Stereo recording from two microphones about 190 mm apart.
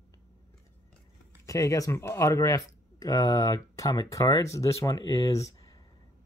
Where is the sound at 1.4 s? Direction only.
15° left (ahead or behind).